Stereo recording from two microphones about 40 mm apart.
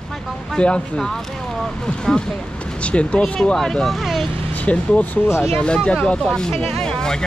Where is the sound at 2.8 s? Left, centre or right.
Left.